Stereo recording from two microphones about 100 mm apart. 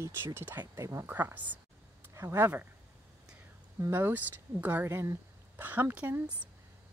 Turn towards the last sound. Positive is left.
turn(degrees=-20)  # may be behind; listen again after turning